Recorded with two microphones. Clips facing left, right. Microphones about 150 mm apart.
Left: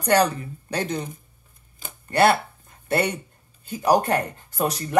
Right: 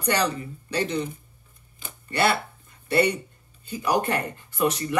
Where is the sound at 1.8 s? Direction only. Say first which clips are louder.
Left 5 dB; 50° left (ahead or behind).